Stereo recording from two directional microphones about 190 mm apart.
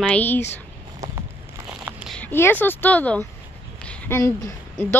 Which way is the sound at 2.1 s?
10° left (ahead or behind).